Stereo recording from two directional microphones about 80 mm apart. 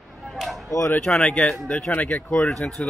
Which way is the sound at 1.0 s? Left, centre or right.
Centre.